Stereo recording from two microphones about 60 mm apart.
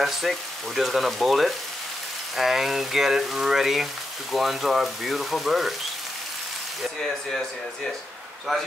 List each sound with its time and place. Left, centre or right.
0.0 s frying: centre